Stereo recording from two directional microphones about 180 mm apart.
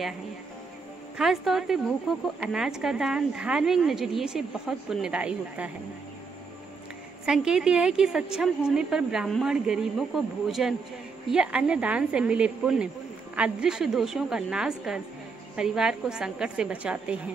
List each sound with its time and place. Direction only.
1.1 s a woman's voice: centre (ahead or behind)
7.2 s a woman's voice: 5° right (ahead or behind)